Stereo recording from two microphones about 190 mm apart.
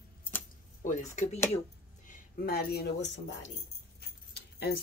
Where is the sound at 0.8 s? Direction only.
40° left (ahead or behind).